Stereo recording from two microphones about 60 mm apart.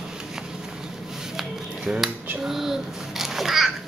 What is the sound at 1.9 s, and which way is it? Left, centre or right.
Dishes, centre.